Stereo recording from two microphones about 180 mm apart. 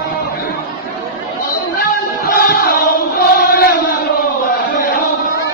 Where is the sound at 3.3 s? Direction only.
50° left (ahead or behind).